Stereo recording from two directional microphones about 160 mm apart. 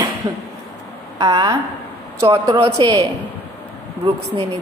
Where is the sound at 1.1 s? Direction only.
25° right (ahead or behind).